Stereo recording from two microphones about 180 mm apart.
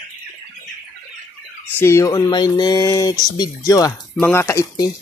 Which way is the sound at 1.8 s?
15° left (ahead or behind).